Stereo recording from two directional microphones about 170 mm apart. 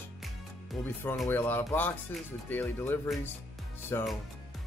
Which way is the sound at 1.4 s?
10° left (ahead or behind).